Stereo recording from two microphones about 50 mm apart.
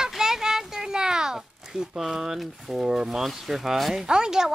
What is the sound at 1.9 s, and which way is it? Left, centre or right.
Speech, centre.